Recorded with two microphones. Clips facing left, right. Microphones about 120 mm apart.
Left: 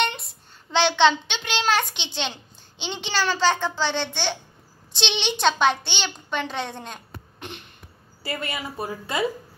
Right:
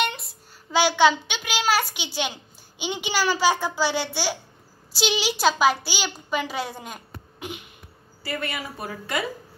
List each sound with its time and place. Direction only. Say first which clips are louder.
0.0 s a child's voice: left 1 dB; centre (ahead or behind)
8.2 s a woman's voice: even; 20° left (ahead or behind)